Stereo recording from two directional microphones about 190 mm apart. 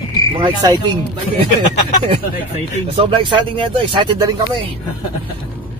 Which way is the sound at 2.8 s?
30° right (ahead or behind).